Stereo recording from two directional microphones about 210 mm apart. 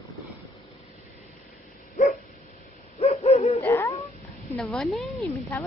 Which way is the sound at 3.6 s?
15° left (ahead or behind).